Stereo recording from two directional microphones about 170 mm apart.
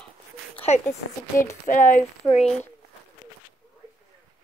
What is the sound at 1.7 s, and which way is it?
Speech, 50° left (ahead or behind).